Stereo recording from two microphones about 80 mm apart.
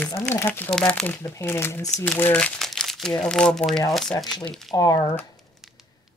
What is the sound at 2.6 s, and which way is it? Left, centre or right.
Speech, centre.